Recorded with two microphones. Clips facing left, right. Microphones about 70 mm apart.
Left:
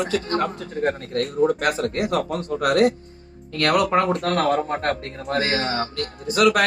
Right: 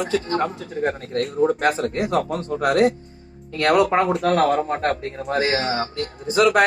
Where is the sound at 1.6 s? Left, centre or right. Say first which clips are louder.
Right 1 dB; right.